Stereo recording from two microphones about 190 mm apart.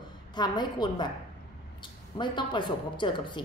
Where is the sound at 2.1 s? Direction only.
25° left (ahead or behind).